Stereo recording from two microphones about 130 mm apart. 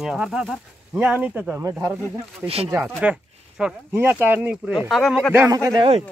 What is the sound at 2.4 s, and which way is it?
Speech, 50° right (ahead or behind).